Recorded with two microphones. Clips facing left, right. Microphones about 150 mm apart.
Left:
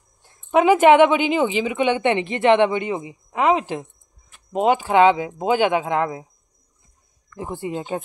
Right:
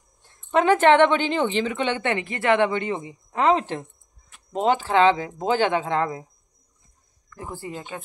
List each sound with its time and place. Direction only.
0.2 s a woman's voice: 10° left (ahead or behind)
7.3 s speech: 20° left (ahead or behind)